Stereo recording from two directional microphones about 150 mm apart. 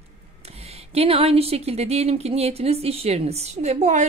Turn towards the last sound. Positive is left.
turn(degrees=-50)  # may be behind; listen again after turning